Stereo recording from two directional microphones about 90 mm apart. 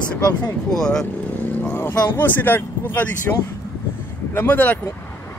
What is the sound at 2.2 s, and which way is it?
Speech, 20° left (ahead or behind).